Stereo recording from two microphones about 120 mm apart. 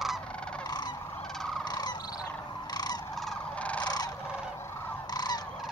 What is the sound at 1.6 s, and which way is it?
Bird, 35° left (ahead or behind).